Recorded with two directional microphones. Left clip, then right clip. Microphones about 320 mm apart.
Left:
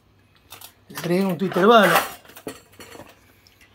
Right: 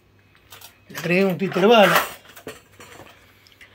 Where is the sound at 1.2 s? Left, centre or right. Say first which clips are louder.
Left 1 dB; centre.